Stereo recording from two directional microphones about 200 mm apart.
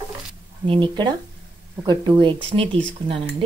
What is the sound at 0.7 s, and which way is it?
Speech, 25° right (ahead or behind).